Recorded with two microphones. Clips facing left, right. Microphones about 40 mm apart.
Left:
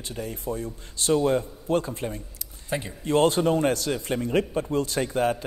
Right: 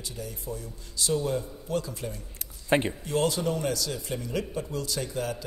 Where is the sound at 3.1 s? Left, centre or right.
Left.